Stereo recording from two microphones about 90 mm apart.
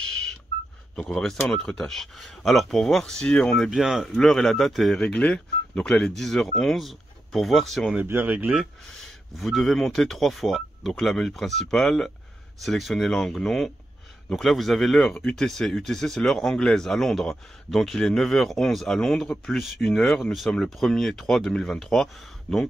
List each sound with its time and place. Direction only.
0.9 s speech: 10° left (ahead or behind)
3.7 s speech: 5° right (ahead or behind)
5.0 s speech: 15° left (ahead or behind)
8.1 s speech: 20° right (ahead or behind)
8.5 s speech: centre (ahead or behind)